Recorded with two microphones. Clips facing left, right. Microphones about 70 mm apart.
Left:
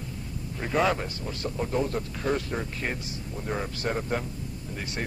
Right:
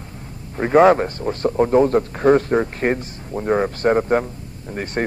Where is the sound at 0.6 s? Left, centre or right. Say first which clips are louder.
Right 13 dB; right.